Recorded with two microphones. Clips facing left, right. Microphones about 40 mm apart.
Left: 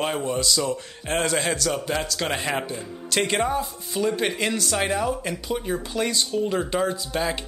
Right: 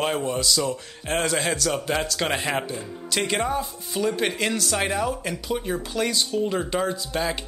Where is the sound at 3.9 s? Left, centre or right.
Centre.